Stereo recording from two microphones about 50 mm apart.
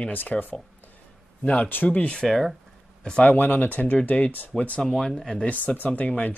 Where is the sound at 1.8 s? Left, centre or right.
Left.